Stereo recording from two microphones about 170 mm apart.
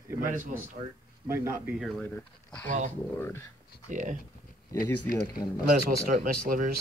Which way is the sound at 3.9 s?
45° right (ahead or behind).